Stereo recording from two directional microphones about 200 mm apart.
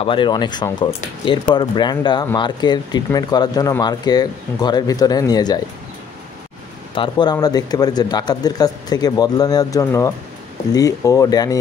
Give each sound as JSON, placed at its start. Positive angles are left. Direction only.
{"t": 0.0, "sound": "speech", "side_deg": 25}
{"t": 7.0, "sound": "speech", "side_deg": 20}